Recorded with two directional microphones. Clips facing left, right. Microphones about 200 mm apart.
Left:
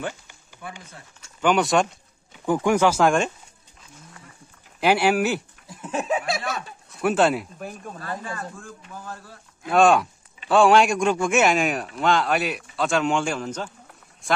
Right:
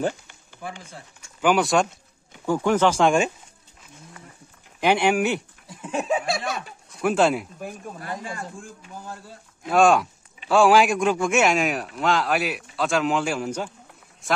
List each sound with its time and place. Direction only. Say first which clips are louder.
0.6 s speech: right 3 dB; 30° right (ahead or behind)
1.4 s speech: even; centre (ahead or behind)
2.4 s speech: left 1 dB; 15° left (ahead or behind)
4.7 s speech: even; 5° left (ahead or behind)
8.0 s speech: left 1 dB; 15° right (ahead or behind)
9.7 s speech: even; centre (ahead or behind)